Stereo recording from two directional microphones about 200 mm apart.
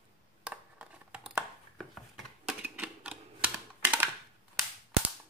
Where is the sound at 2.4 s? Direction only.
5° right (ahead or behind).